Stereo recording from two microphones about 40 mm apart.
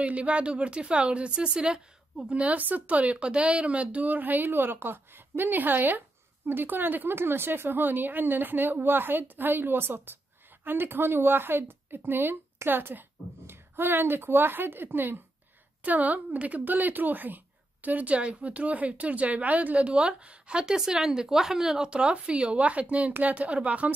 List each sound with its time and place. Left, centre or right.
0.0 s a woman's voice: right
2.5 s speech: right
3.3 s speech: right
4.1 s a woman's voice: right
7.2 s speech: right
10.6 s speech: right
15.8 s a woman's voice: right